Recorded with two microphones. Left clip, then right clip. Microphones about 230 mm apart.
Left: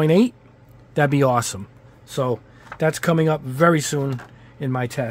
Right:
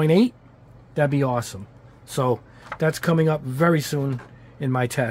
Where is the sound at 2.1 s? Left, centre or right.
Centre.